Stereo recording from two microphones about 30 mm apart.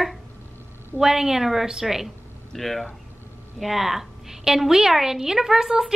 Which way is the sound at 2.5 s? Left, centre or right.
Centre.